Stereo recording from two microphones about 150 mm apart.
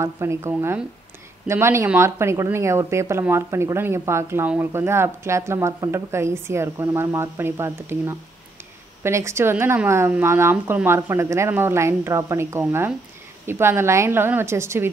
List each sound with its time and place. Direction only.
0.0 s speech: 20° right (ahead or behind)